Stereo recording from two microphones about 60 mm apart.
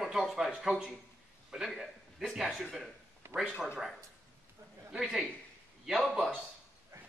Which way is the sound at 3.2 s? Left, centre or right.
Right.